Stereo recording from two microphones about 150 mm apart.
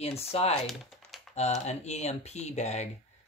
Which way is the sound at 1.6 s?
45° left (ahead or behind).